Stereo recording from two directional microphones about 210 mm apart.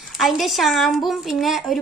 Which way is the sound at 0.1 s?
Centre (ahead or behind).